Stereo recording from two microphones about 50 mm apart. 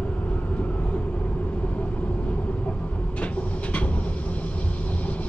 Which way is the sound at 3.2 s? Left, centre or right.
Left.